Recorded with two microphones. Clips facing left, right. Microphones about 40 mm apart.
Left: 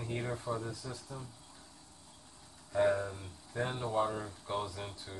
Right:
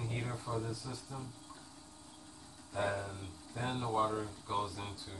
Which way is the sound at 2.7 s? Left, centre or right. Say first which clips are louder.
Left 6 dB; centre.